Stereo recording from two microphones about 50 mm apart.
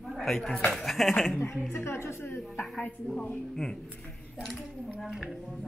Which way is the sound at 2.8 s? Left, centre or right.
Left.